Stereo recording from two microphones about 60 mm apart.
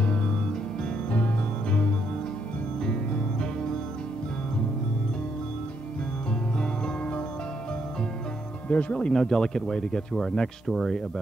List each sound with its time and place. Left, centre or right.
0.8 s music: centre
8.6 s speech: left; by 11.0 s centre